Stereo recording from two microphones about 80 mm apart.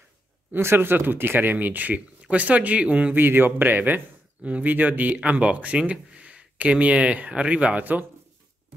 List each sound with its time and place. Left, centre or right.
0.5 s speech: right